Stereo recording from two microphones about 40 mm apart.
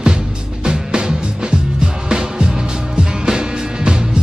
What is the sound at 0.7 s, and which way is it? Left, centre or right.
Music, right.